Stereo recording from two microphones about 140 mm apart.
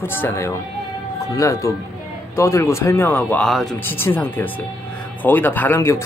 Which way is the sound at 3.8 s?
15° left (ahead or behind).